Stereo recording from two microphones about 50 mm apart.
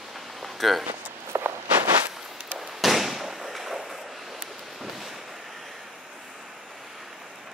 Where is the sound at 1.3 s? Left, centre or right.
Right.